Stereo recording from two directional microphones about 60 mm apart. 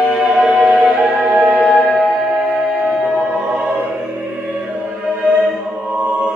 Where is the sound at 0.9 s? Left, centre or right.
Centre.